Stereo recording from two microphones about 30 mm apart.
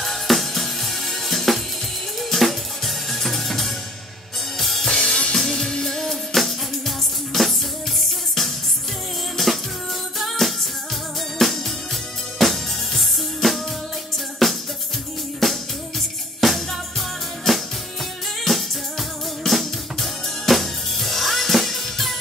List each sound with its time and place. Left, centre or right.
0.0 s music: centre
4.6 s drum kit: centre
4.8 s drum kit: centre
5.3 s music: centre
9.4 s music: centre
18.4 s music: centre